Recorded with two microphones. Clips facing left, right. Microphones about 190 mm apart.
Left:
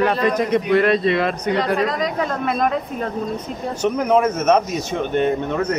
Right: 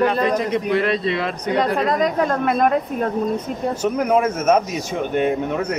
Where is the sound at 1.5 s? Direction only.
50° right (ahead or behind).